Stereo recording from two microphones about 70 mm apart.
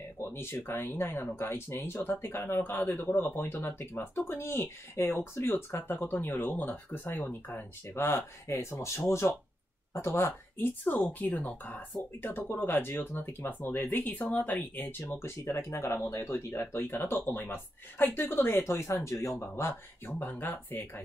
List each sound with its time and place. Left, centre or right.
0.3 s speech: left
20.1 s speech: left